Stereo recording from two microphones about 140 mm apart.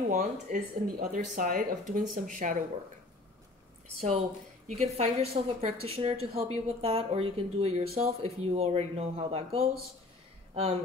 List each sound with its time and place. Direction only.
0.1 s speech: 70° right (ahead or behind)
4.6 s speech: 50° right (ahead or behind)